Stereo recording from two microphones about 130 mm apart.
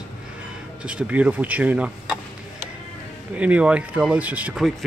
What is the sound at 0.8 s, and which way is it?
Speech, 10° right (ahead or behind).